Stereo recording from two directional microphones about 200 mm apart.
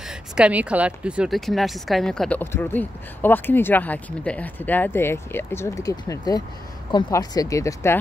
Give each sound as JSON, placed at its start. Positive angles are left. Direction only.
{"t": 0.1, "sound": "speech", "side_deg": -5}